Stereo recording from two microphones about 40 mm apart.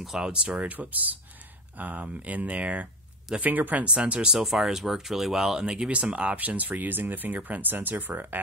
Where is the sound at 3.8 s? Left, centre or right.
Right.